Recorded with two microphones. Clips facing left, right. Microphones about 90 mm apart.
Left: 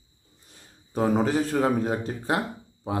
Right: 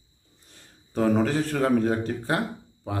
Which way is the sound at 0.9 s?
15° left (ahead or behind).